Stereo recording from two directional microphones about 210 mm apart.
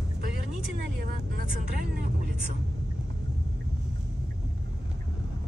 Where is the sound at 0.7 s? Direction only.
45° right (ahead or behind).